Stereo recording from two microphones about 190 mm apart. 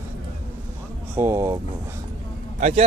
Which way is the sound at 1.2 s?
15° right (ahead or behind).